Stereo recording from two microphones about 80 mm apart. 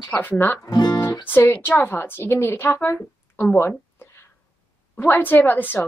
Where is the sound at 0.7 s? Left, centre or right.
Left.